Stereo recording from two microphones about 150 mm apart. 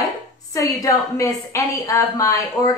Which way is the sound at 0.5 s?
20° left (ahead or behind).